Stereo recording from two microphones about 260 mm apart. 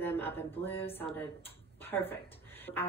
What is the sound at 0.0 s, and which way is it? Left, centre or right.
A woman's voice, centre.